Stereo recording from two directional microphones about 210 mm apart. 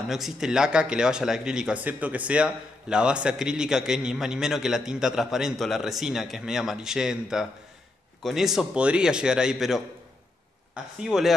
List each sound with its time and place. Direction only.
0.1 s speech: centre (ahead or behind)
11.0 s speech: centre (ahead or behind)